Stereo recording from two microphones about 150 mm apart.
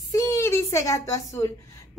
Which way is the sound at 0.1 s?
20° left (ahead or behind).